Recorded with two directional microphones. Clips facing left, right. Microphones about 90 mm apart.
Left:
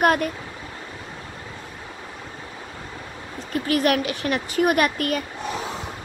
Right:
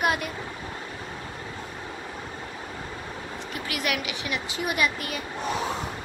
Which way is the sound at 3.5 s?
40° left (ahead or behind).